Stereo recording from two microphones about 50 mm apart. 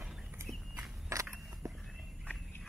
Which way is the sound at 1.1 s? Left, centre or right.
Right.